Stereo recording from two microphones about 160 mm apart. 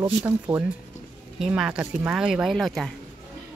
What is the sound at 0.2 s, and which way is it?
Speech, 15° right (ahead or behind).